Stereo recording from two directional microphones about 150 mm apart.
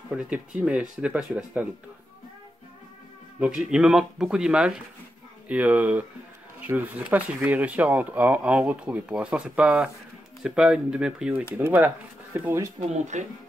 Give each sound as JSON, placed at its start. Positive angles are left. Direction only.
{"t": 0.1, "sound": "speech", "side_deg": -5}
{"t": 3.3, "sound": "speech", "side_deg": -5}
{"t": 12.9, "sound": "speech", "side_deg": -50}